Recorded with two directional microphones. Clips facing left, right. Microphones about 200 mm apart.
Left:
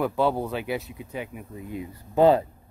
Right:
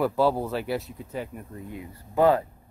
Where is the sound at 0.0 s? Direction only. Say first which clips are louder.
Right 1 dB; 5° right (ahead or behind).